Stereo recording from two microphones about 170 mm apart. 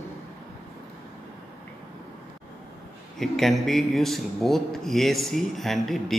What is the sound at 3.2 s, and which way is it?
A man's voice, centre (ahead or behind).